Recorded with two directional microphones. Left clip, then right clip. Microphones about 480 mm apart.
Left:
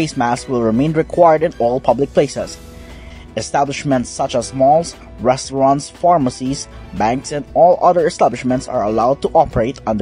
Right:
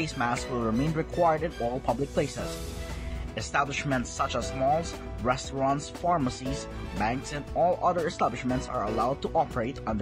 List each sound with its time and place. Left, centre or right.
0.0 s speech: centre
3.3 s speech: centre